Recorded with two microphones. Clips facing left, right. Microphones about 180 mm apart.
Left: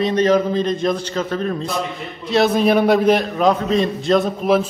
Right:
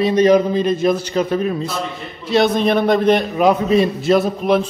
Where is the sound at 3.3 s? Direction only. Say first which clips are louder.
Right 2 dB; 10° right (ahead or behind).